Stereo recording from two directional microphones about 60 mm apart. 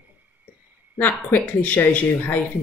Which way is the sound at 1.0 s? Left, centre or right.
Left.